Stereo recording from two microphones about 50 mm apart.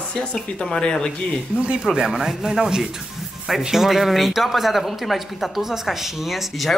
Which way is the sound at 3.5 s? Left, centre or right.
Centre.